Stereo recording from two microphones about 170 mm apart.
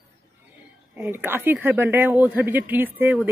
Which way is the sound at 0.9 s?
10° right (ahead or behind).